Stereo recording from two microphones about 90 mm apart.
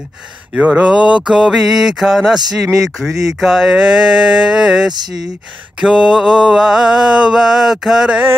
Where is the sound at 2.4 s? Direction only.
35° right (ahead or behind).